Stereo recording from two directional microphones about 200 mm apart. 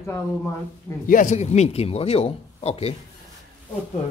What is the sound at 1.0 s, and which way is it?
Speech, 40° left (ahead or behind).